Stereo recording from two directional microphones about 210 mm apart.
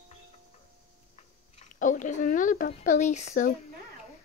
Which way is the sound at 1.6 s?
35° left (ahead or behind).